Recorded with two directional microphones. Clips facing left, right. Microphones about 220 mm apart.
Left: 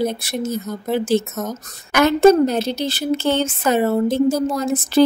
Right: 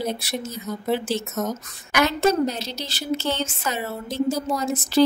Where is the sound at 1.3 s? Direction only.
5° left (ahead or behind).